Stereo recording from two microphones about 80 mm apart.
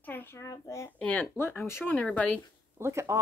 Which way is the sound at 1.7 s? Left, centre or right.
Left.